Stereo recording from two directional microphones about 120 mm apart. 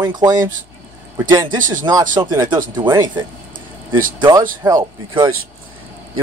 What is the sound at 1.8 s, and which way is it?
Speech, 30° right (ahead or behind).